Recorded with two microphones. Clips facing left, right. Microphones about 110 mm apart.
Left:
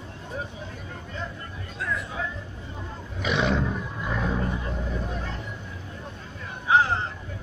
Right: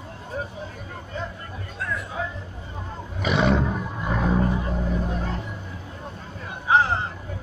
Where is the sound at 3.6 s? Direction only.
40° right (ahead or behind).